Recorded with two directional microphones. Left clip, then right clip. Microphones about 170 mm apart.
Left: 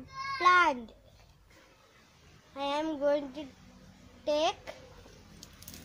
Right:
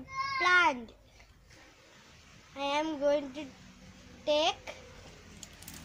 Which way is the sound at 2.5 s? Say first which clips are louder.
Right 1 dB; 45° left (ahead or behind).